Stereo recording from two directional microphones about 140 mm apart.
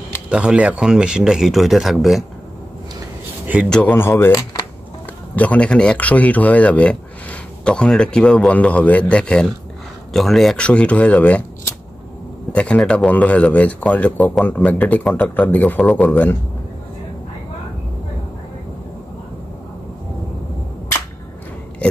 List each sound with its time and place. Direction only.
0.3 s speech: 10° right (ahead or behind)
3.7 s speech: 15° left (ahead or behind)